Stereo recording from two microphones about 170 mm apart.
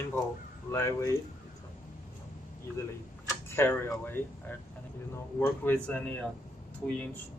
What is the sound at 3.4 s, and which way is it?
A man's voice, 15° left (ahead or behind).